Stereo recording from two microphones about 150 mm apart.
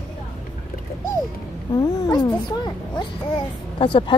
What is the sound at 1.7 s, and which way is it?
Speech, 25° left (ahead or behind).